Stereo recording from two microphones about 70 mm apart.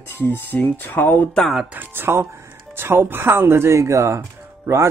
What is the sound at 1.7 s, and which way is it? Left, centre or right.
Speech, right.